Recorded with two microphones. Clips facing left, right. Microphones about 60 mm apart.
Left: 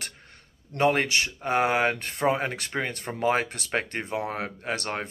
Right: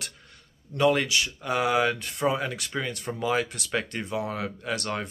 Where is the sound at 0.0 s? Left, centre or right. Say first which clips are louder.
Left 1 dB; left.